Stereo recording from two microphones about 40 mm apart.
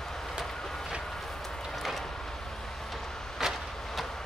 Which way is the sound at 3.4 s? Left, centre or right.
Centre.